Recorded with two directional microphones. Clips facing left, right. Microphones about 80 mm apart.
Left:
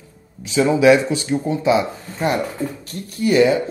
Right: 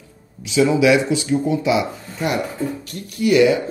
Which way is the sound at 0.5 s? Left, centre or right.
Left.